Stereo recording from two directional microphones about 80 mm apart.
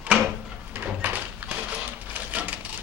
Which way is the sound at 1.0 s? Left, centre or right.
Right.